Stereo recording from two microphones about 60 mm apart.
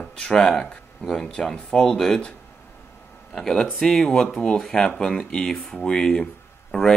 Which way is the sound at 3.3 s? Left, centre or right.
Centre.